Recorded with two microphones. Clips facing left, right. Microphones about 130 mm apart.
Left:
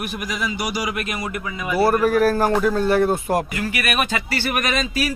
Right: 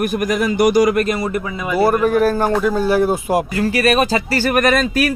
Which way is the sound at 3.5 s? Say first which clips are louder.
Right 8 dB; 35° right (ahead or behind).